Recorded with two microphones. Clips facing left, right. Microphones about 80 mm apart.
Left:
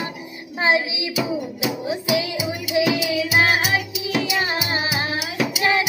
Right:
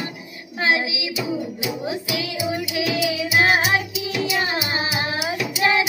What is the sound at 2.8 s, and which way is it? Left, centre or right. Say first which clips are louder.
Music: left 5 dB; left.